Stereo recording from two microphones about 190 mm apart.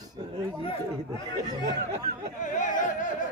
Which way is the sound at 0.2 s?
25° right (ahead or behind).